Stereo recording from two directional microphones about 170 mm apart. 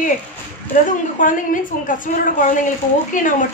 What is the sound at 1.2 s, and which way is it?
Speech, 50° left (ahead or behind).